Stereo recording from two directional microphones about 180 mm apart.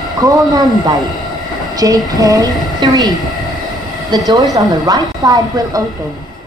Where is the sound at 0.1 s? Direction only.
20° right (ahead or behind).